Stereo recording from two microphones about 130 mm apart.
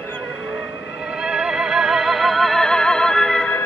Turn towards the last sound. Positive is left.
turn(degrees=5)  # may be behind; listen again after turning